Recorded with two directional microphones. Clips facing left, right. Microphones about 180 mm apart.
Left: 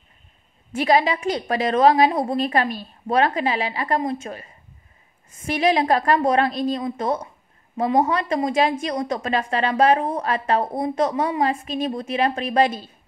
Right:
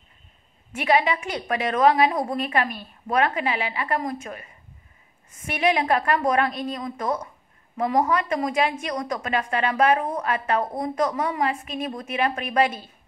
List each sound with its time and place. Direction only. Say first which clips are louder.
0.7 s a woman's voice: left 3 dB; 35° left (ahead or behind)
5.5 s a woman's voice: left 3 dB; 35° left (ahead or behind)